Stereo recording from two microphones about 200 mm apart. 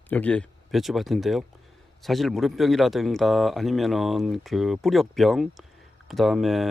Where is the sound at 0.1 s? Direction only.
5° left (ahead or behind).